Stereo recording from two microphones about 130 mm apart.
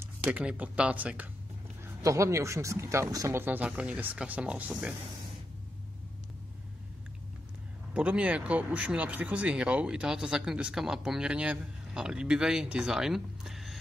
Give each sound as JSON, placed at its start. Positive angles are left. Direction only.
{"t": 0.3, "sound": "speech", "side_deg": -10}
{"t": 2.0, "sound": "speech", "side_deg": -25}
{"t": 7.9, "sound": "speech", "side_deg": -10}